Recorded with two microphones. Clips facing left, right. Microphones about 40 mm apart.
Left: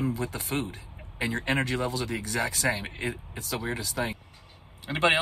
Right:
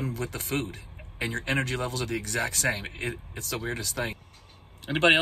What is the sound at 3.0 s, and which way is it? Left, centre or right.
Speech, right.